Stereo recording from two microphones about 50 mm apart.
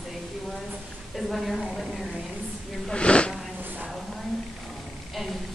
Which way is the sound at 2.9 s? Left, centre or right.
Left.